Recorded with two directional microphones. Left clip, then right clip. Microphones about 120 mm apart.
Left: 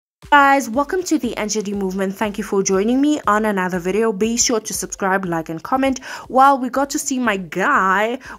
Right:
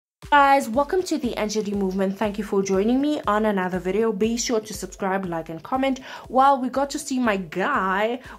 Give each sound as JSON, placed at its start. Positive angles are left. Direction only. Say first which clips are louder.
{"t": 0.3, "sound": "a woman's voice", "louder": "left 4 dB", "side_deg": 25}